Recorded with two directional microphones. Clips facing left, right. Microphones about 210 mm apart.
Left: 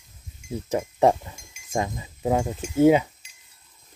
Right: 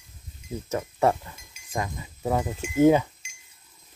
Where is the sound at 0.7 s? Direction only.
15° left (ahead or behind).